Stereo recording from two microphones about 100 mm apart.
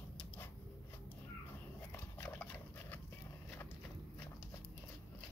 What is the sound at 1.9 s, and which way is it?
Dog, 20° left (ahead or behind).